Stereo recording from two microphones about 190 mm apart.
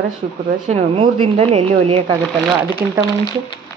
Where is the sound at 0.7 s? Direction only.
35° right (ahead or behind).